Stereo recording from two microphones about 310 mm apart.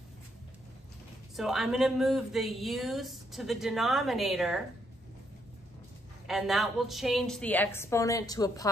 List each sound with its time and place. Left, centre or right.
1.3 s a woman's voice: centre
6.2 s a woman's voice: centre